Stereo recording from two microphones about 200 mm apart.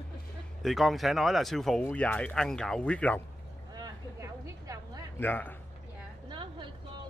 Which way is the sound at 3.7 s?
20° right (ahead or behind).